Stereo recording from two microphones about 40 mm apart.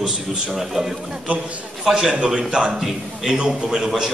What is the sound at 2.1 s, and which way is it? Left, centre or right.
A man's voice, centre.